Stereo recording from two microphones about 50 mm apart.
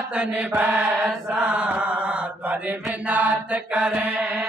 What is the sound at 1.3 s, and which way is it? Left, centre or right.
Mantra, right.